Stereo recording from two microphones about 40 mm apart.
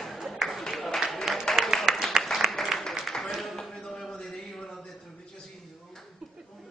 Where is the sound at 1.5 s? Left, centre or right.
Centre.